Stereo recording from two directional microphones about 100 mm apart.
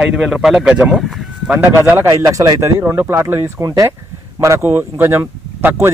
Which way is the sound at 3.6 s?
35° right (ahead or behind).